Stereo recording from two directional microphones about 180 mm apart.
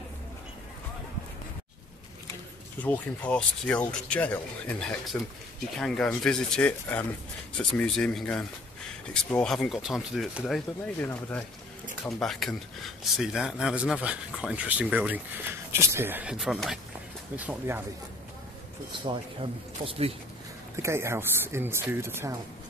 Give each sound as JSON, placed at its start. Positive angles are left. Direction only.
{"t": 2.8, "sound": "speech", "side_deg": 5}
{"t": 11.0, "sound": "speech", "side_deg": 10}
{"t": 19.8, "sound": "speech", "side_deg": -30}
{"t": 20.7, "sound": "speech", "side_deg": -15}